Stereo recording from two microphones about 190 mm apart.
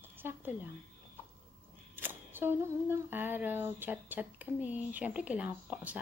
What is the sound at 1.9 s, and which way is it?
Speech, 10° right (ahead or behind).